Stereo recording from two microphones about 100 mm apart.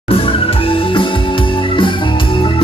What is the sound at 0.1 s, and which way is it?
Music, 65° left (ahead or behind).